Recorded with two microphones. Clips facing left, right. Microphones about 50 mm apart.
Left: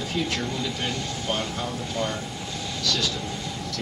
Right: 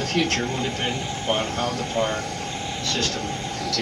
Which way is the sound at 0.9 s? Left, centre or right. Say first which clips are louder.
Right 3 dB; right.